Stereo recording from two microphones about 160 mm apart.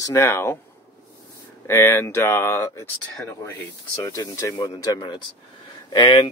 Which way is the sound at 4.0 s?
20° left (ahead or behind).